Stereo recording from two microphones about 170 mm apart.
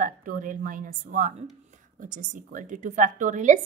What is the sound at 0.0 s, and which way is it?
A woman's voice, 50° right (ahead or behind).